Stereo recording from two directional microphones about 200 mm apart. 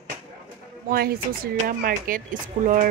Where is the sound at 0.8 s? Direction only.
50° right (ahead or behind).